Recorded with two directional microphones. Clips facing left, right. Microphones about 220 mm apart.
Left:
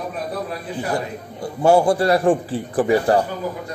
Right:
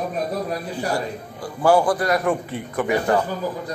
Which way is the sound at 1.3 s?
25° left (ahead or behind).